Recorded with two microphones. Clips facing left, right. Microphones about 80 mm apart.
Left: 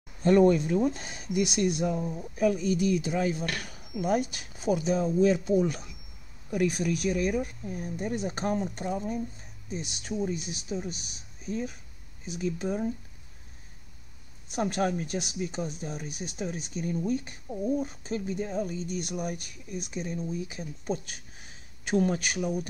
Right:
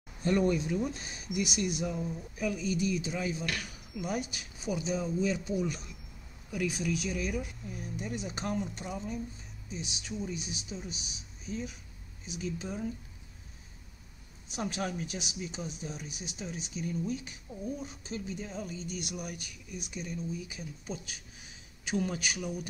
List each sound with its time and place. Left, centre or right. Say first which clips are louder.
0.5 s speech: left 6 dB; left
14.5 s speech: left 7 dB; left